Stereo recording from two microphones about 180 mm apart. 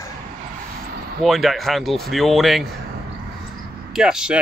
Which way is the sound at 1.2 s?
Centre (ahead or behind).